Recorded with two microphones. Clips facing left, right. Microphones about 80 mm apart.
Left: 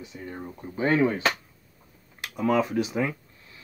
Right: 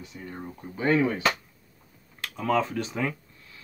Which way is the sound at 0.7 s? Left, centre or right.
Left.